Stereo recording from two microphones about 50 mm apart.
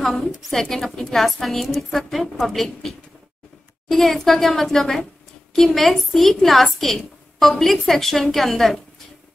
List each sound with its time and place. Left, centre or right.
0.0 s a woman's voice: centre